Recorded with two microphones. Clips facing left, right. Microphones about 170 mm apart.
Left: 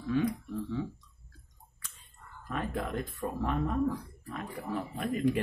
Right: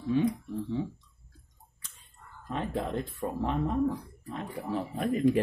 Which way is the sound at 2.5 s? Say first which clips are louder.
Right 2 dB; 30° right (ahead or behind).